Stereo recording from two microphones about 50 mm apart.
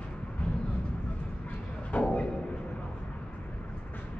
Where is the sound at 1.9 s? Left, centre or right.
Left.